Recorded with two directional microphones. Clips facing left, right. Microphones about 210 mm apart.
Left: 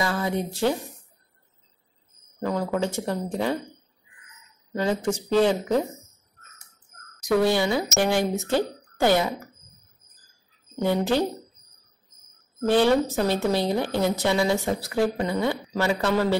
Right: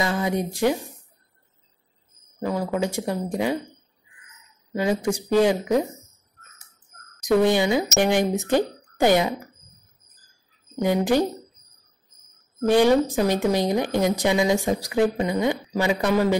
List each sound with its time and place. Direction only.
0.0 s speech: 20° right (ahead or behind)
2.4 s a woman's voice: 10° right (ahead or behind)
4.7 s a woman's voice: 10° right (ahead or behind)
7.2 s a woman's voice: 20° right (ahead or behind)
10.8 s a woman's voice: 15° right (ahead or behind)
12.6 s a woman's voice: 15° right (ahead or behind)